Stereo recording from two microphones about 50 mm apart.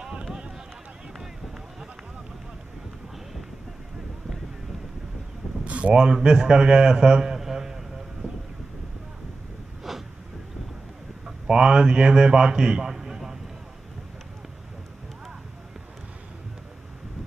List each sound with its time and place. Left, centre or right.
0.0 s a sound: centre
5.7 s a man's voice: right; by 7.8 s centre
9.9 s vehicle: centre
11.2 s a man's voice: centre